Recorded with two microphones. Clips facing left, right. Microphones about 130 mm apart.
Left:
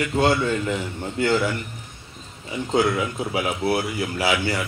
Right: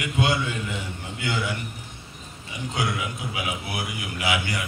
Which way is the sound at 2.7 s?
35° left (ahead or behind).